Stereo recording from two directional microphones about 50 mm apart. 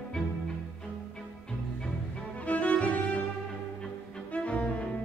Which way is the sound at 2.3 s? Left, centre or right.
Left.